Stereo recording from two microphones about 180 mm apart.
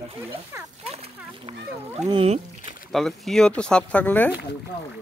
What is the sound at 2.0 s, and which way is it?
Speech, 30° right (ahead or behind).